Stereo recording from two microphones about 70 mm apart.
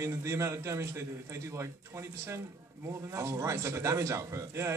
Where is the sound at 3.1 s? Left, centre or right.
Right.